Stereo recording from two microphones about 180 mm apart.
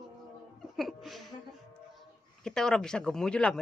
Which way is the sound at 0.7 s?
Centre (ahead or behind).